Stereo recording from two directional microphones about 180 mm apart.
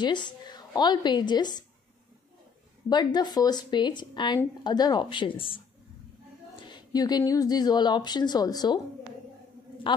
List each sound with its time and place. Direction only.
0.0 s speech: 25° left (ahead or behind)
2.9 s speech: 25° left (ahead or behind)
6.6 s speech: 25° left (ahead or behind)
9.9 s speech: 25° left (ahead or behind)